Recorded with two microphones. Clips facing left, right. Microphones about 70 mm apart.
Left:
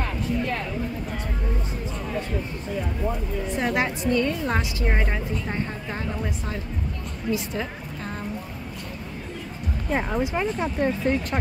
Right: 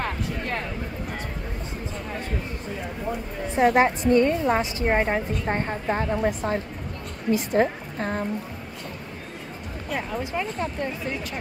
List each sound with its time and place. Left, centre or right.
3.4 s a woman's voice: right
9.8 s speech: left